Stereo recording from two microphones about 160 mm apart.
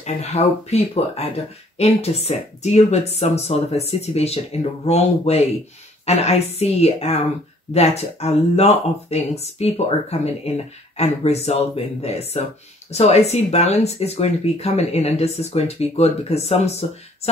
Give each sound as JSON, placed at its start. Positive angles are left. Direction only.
{"t": 0.0, "sound": "speech", "side_deg": 45}